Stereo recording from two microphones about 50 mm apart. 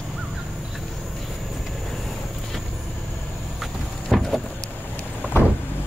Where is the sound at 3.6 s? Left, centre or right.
Centre.